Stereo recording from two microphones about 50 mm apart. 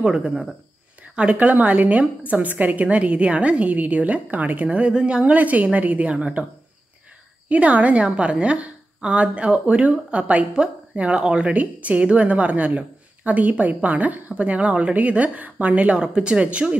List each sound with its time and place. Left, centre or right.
0.0 s speech: centre
1.3 s a woman's voice: right
7.4 s a woman's voice: right